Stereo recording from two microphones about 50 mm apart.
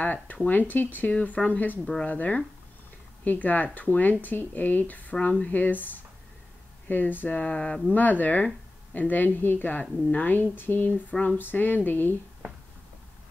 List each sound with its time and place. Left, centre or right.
0.0 s speech: left
10.9 s speech: left
11.3 s speech: left